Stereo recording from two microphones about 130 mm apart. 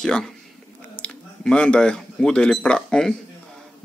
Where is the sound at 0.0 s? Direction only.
5° left (ahead or behind).